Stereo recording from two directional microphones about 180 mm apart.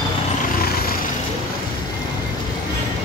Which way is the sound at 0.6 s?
55° left (ahead or behind).